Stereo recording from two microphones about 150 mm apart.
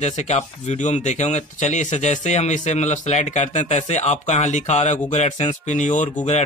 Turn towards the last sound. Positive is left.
turn(degrees=55)  # may be behind; listen again after turning